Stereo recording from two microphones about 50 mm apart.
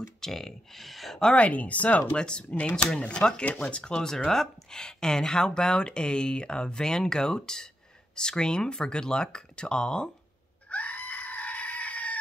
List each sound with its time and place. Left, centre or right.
0.2 s speech: centre
1.3 s speech: left
2.1 s speech: centre
10.7 s goat: left